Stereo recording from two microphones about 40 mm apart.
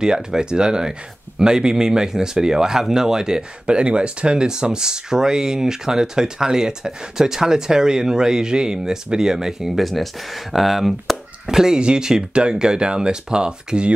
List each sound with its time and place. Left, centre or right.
0.0 s speech: centre
11.4 s speech: centre